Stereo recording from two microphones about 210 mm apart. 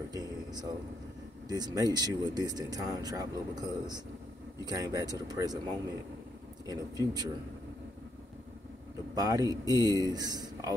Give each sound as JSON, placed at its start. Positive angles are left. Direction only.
{"t": 0.1, "sound": "speech", "side_deg": -15}
{"t": 9.1, "sound": "speech", "side_deg": -15}